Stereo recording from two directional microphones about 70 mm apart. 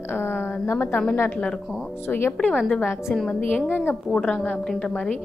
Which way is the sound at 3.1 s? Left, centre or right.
Centre.